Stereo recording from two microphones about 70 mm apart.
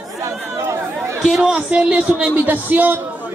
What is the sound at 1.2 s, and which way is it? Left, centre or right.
A man's voice, centre.